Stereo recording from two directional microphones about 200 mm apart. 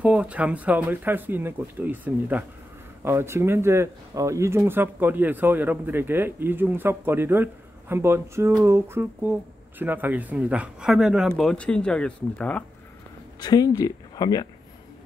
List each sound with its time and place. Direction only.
0.0 s speech: 5° right (ahead or behind)
13.4 s speech: 20° left (ahead or behind)